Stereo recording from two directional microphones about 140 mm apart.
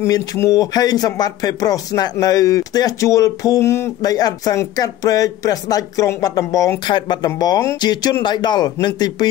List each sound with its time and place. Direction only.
0.0 s speech: 25° left (ahead or behind)